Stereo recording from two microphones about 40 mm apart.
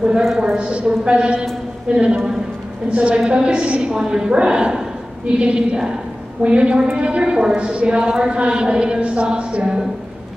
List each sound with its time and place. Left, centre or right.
0.4 s a woman's voice: right